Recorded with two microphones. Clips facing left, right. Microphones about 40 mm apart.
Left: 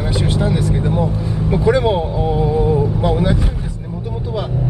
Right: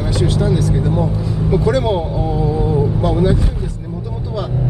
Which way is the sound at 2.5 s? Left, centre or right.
Centre.